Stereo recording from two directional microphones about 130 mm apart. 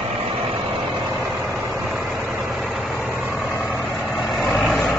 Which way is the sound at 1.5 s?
5° right (ahead or behind).